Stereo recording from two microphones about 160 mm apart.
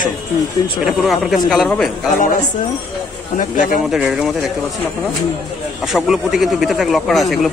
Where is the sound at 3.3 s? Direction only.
55° left (ahead or behind).